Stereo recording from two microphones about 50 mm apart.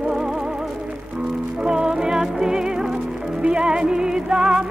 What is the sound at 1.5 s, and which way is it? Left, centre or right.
Music, centre.